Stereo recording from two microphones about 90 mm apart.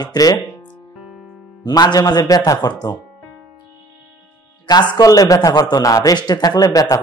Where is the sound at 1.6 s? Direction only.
45° left (ahead or behind).